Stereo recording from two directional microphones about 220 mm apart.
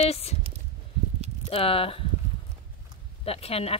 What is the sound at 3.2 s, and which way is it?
Speech, 25° left (ahead or behind).